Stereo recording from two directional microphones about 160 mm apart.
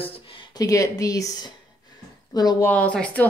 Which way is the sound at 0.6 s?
20° left (ahead or behind).